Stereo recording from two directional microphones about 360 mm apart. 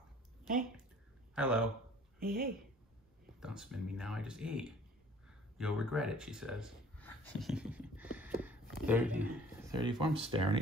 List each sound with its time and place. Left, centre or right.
1.3 s a man's voice: centre
2.1 s a woman's voice: right
3.3 s speech: centre